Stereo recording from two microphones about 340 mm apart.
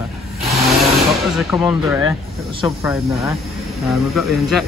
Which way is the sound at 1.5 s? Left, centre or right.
Centre.